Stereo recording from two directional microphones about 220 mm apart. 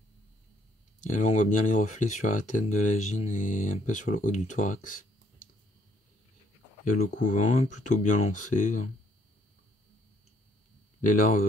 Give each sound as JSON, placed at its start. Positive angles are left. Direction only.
{"t": 1.0, "sound": "speech", "side_deg": 35}
{"t": 6.8, "sound": "speech", "side_deg": 35}
{"t": 11.0, "sound": "speech", "side_deg": 40}